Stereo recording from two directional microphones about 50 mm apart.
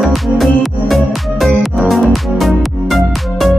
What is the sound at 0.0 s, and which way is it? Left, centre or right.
Music, centre.